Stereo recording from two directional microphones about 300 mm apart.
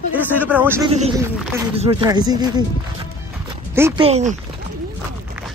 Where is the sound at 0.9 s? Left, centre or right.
Centre.